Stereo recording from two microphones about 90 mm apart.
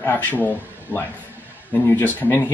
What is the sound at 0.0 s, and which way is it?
Speech, 20° left (ahead or behind).